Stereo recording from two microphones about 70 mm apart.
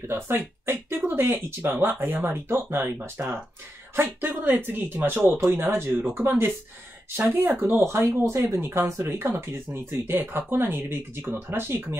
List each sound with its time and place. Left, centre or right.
0.7 s speech: right
2.0 s speech: right